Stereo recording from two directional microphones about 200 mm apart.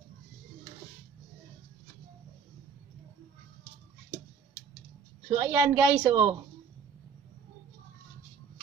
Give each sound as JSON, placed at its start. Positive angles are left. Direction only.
{"t": 5.4, "sound": "a woman's voice", "side_deg": -10}